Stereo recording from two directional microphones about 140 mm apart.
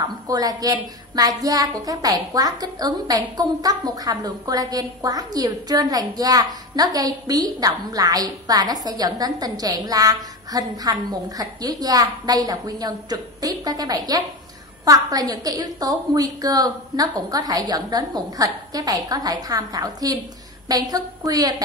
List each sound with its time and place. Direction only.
0.0 s a woman's voice: 30° right (ahead or behind)